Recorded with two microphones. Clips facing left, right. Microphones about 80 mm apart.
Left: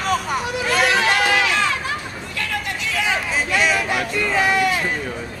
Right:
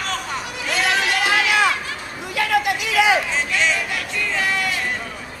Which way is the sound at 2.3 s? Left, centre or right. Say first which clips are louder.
Right 8 dB; right.